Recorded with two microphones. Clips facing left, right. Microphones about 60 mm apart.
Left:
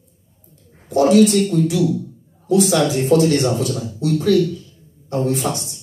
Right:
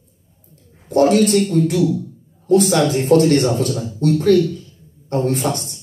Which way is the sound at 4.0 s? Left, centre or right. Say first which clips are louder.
Right 2 dB; right.